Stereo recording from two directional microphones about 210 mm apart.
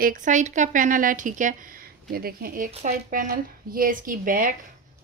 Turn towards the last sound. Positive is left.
turn(degrees=-40)  # may be behind; listen again after turning